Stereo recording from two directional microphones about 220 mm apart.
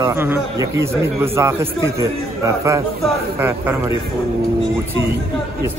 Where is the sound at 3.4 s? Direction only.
10° right (ahead or behind).